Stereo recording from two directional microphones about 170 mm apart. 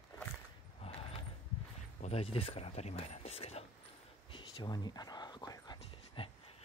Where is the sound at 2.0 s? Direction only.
35° left (ahead or behind).